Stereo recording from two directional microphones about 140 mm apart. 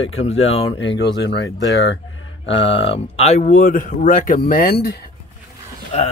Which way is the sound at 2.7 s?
45° left (ahead or behind).